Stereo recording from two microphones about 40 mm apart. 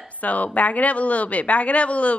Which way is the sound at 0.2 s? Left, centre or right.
Left.